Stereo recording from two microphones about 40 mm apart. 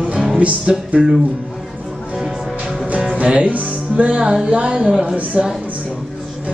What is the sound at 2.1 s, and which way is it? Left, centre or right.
Music, centre.